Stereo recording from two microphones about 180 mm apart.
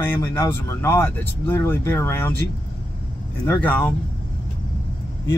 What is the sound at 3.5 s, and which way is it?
Speech, 10° left (ahead or behind).